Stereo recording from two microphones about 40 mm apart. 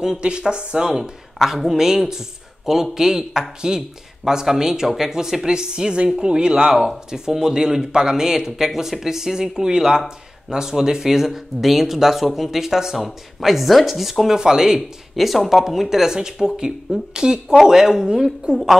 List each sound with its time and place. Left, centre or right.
0.0 s speech: centre
1.4 s speech: centre
14.4 s speech: centre
15.1 s speech: centre; by 18.6 s right